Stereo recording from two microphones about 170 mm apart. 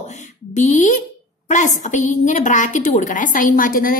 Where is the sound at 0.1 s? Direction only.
45° left (ahead or behind).